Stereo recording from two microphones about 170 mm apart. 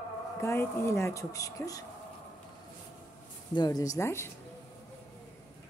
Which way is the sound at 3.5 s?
25° left (ahead or behind).